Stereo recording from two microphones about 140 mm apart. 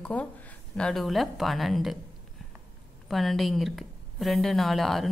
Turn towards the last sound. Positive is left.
turn(degrees=0)  # may be behind; listen again after turning